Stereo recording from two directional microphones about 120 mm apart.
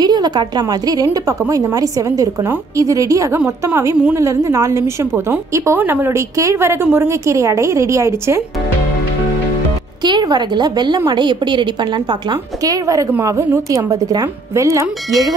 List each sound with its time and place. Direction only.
0.0 s a woman's voice: 35° right (ahead or behind)
10.0 s a woman's voice: 35° right (ahead or behind)